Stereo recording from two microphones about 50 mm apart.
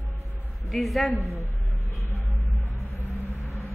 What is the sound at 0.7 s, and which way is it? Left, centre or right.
Speech, centre.